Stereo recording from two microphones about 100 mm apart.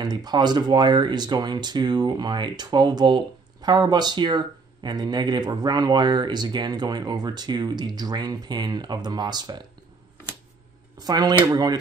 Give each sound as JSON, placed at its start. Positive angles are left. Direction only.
{"t": 0.0, "sound": "speech", "side_deg": -40}
{"t": 11.0, "sound": "speech", "side_deg": -45}